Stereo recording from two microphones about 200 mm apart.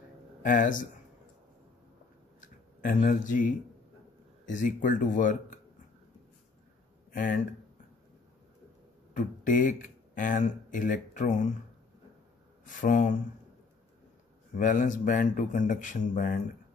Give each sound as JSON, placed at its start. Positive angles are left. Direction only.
{"t": 0.4, "sound": "speech", "side_deg": 45}
{"t": 2.8, "sound": "speech", "side_deg": 45}
{"t": 7.1, "sound": "speech", "side_deg": 40}
{"t": 9.1, "sound": "speech", "side_deg": 40}
{"t": 12.6, "sound": "speech", "side_deg": 40}
{"t": 14.5, "sound": "speech", "side_deg": 40}